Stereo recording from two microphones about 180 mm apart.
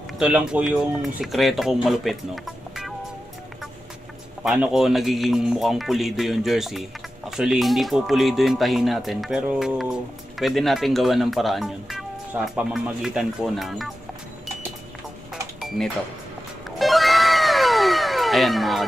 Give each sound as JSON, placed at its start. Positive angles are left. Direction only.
{"t": 0.2, "sound": "speech", "side_deg": -5}
{"t": 4.4, "sound": "speech", "side_deg": -5}
{"t": 16.7, "sound": "cat", "side_deg": 0}